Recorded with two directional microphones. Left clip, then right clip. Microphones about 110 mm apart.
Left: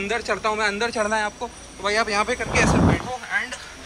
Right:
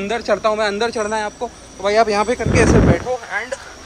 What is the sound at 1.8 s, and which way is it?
Speech, 55° right (ahead or behind).